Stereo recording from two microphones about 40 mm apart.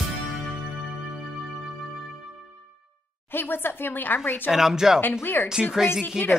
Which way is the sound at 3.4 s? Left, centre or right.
Left.